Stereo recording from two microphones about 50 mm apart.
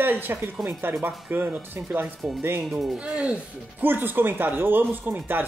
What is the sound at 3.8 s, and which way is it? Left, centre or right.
Speech, right.